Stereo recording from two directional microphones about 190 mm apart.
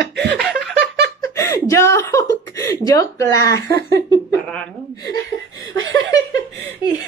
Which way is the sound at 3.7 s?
55° right (ahead or behind).